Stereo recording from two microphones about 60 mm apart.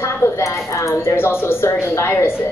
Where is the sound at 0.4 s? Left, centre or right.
Left.